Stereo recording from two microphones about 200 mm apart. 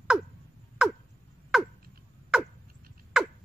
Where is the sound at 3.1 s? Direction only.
Centre (ahead or behind).